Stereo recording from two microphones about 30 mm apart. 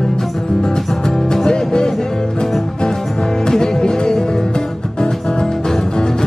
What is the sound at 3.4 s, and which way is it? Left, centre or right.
Music, centre.